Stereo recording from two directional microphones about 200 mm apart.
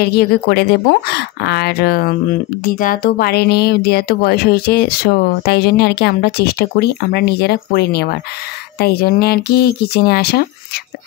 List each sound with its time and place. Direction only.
0.0 s speech: 50° left (ahead or behind)